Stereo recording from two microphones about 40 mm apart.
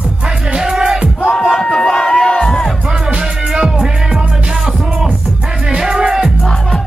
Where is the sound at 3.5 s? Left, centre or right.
Centre.